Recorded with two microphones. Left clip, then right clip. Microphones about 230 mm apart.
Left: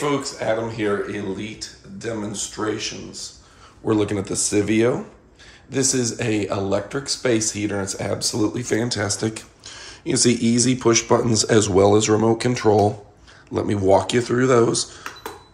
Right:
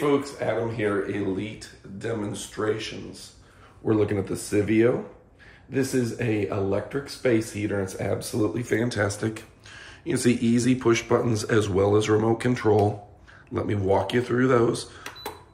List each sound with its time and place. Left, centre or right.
0.0 s speech: centre